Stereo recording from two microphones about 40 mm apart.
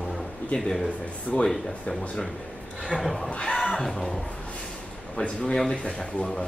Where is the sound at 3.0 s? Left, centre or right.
Centre.